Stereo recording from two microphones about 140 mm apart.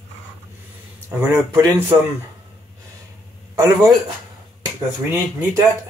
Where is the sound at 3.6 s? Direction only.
25° right (ahead or behind).